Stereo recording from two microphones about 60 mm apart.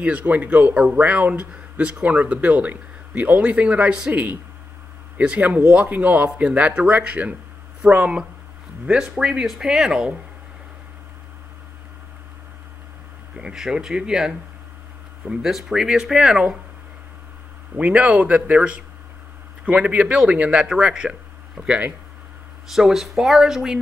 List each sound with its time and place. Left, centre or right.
0.0 s speech: right
5.4 s speech: right; by 10.1 s centre
13.4 s speech: centre
17.7 s speech: right
21.6 s speech: right
22.8 s speech: centre